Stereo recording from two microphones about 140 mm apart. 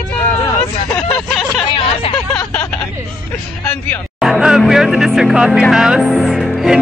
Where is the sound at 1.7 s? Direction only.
40° left (ahead or behind).